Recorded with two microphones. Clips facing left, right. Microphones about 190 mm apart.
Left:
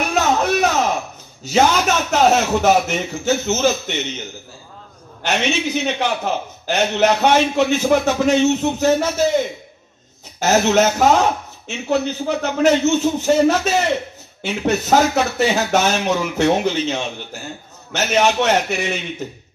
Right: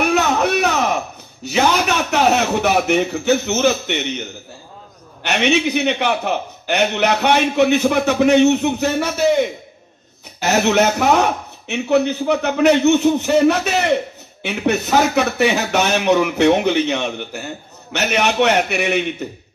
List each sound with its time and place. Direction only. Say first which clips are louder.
0.0 s a sound: right 2 dB; 65° right (ahead or behind)
1.6 s a man's voice: left 1 dB; 60° right (ahead or behind)
5.2 s a man's voice: right 3 dB; 65° right (ahead or behind)
10.4 s a man's voice: even; 60° right (ahead or behind)